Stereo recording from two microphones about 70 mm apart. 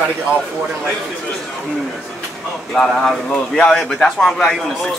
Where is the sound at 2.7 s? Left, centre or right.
Centre.